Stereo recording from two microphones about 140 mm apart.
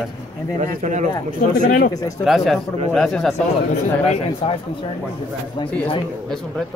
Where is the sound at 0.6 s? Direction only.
60° right (ahead or behind).